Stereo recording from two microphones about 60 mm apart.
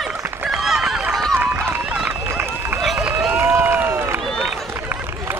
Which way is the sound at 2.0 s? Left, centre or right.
Right.